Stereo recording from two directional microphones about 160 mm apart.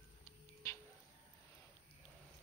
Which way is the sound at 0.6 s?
20° left (ahead or behind).